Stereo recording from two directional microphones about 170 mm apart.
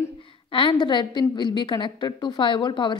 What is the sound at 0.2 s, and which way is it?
A woman's voice, 30° left (ahead or behind).